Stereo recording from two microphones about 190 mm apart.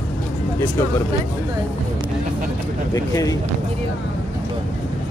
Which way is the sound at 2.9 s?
20° left (ahead or behind).